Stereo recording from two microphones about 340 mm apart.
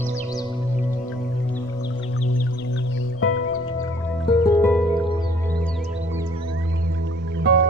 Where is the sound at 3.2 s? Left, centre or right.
Left.